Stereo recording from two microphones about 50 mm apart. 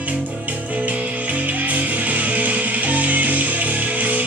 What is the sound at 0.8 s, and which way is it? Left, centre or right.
Music, right.